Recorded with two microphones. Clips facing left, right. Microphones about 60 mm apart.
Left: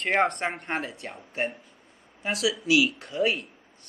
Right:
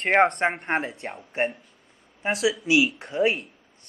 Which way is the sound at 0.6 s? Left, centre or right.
Right.